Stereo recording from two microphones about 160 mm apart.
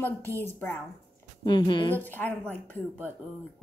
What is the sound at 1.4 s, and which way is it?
Speech, 30° left (ahead or behind).